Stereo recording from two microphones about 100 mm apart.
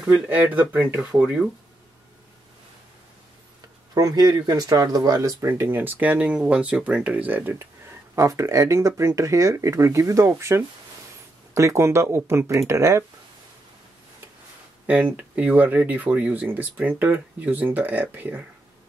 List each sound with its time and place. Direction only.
0.0 s speech: 10° right (ahead or behind)
3.9 s speech: 40° right (ahead or behind)
5.5 s speech: 25° right (ahead or behind)
8.2 s speech: 30° right (ahead or behind)
14.9 s speech: 15° right (ahead or behind)